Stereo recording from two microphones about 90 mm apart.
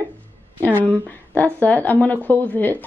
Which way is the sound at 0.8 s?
15° left (ahead or behind).